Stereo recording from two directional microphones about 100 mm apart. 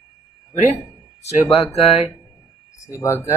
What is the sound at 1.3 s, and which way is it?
Speech, 80° left.